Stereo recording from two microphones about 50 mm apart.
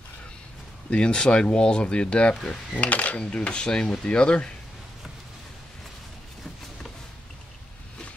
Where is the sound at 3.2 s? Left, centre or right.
Centre.